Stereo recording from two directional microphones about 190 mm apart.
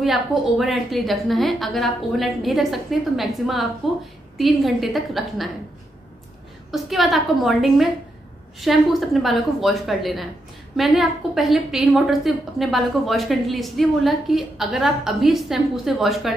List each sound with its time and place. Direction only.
0.0 s a woman's voice: centre (ahead or behind)
6.7 s a woman's voice: centre (ahead or behind)